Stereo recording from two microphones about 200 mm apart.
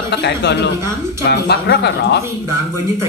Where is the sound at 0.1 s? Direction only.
55° left (ahead or behind).